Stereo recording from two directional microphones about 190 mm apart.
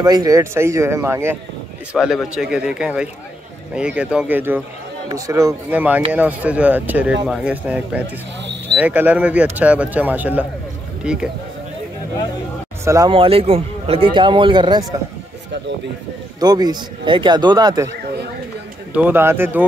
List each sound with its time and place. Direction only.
0.0 s speech: 20° right (ahead or behind); by 11.2 s 5° right (ahead or behind)
12.8 s speech: 15° right (ahead or behind)
13.1 s a man's voice: 30° right (ahead or behind)
16.3 s a man's voice: 20° right (ahead or behind)
17.8 s speech: 60° right (ahead or behind)
18.9 s speech: 10° right (ahead or behind)